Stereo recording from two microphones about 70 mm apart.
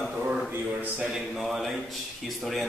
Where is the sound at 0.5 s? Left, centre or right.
Right.